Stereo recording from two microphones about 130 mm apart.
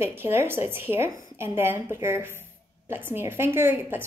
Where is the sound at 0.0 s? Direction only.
15° right (ahead or behind).